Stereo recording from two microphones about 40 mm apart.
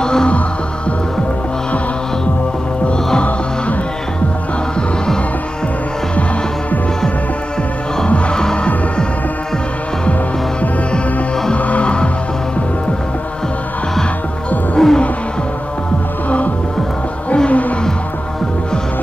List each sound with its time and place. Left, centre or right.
0.0 s music: centre
8.1 s music: left
11.5 s music: left
14.8 s music: centre
16.3 s music: left